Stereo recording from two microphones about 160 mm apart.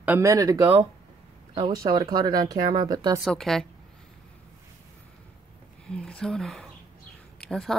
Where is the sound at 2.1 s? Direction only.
25° right (ahead or behind).